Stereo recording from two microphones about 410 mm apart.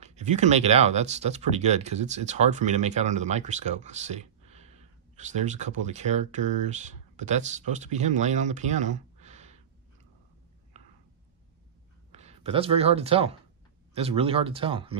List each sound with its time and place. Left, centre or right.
0.0 s speech: centre
12.1 s speech: centre